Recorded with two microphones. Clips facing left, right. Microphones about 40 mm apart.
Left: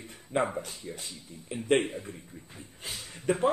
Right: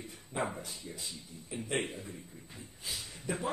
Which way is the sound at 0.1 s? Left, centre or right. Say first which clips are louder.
Left 8 dB; left.